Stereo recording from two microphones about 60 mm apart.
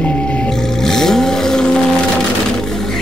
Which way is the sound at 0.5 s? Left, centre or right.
Centre.